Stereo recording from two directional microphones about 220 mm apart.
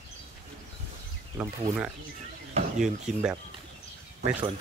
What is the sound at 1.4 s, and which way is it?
Speech, 10° right (ahead or behind).